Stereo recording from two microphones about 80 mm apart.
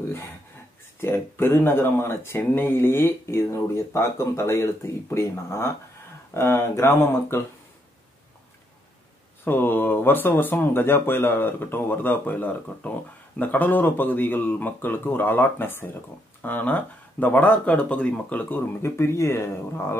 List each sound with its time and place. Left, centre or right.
1.0 s speech: left
9.4 s speech: left
18.8 s speech: left